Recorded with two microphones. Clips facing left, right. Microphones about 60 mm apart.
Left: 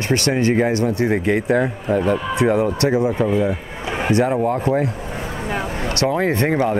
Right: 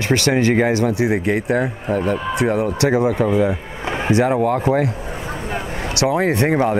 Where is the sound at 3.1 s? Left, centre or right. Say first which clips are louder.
Right 1 dB; centre.